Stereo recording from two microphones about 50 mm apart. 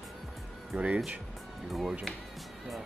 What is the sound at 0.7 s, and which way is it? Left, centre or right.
Speech, right.